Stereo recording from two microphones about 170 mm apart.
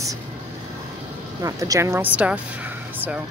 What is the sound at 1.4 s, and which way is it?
Speech, 20° right (ahead or behind).